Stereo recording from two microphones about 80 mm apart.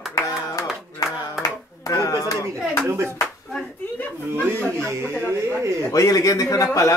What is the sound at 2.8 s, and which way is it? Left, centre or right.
Speech, right.